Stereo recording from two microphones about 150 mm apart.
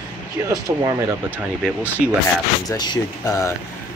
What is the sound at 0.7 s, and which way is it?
Speech, 20° right (ahead or behind).